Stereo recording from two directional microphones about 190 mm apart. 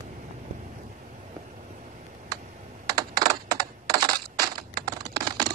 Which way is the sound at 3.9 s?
20° right (ahead or behind).